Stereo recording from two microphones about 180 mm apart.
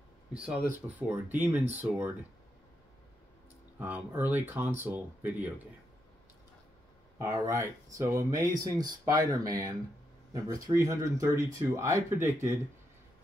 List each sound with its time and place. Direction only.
0.3 s speech: 5° right (ahead or behind)
3.8 s speech: 10° right (ahead or behind)
7.2 s speech: 15° right (ahead or behind)